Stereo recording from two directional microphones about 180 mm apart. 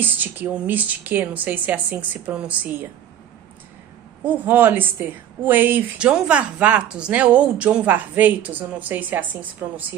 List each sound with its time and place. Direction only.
0.0 s speech: 10° right (ahead or behind)
4.2 s speech: 10° right (ahead or behind)